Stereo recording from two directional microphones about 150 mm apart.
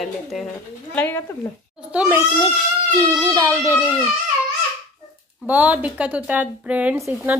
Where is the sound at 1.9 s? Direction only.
15° right (ahead or behind).